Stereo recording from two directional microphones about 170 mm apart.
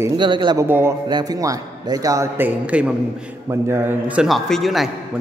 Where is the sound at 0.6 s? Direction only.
10° right (ahead or behind).